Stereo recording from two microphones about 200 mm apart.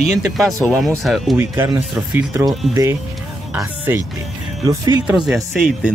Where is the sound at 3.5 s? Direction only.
10° right (ahead or behind).